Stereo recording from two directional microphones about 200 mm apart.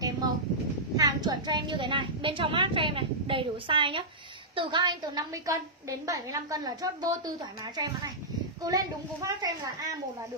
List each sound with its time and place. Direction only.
0.9 s a woman's voice: 20° right (ahead or behind)